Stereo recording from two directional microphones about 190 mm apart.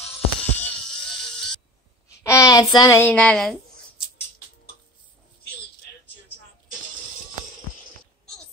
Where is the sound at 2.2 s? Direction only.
15° left (ahead or behind).